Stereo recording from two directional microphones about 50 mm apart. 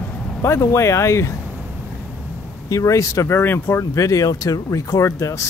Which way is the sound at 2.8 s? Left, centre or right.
Left.